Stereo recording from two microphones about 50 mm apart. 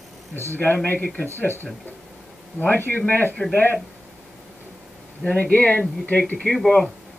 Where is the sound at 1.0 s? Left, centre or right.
Left.